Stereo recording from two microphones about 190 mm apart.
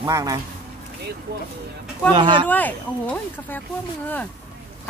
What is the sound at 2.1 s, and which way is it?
Speech, 25° right (ahead or behind).